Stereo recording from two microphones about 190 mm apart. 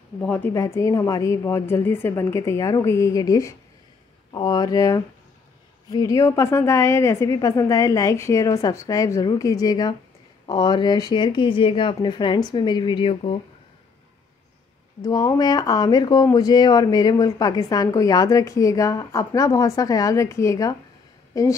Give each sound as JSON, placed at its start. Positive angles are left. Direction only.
{"t": 0.2, "sound": "a woman's voice", "side_deg": 10}
{"t": 15.0, "sound": "a woman's voice", "side_deg": 20}